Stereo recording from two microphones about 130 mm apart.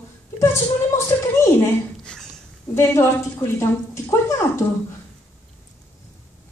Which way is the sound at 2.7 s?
20° left (ahead or behind).